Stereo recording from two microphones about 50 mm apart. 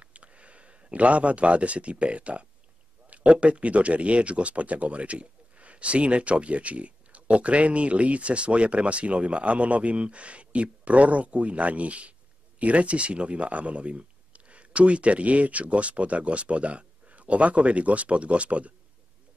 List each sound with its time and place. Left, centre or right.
0.0 s speech: right